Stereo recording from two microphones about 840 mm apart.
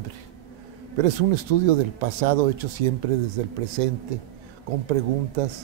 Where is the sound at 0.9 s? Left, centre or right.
Right.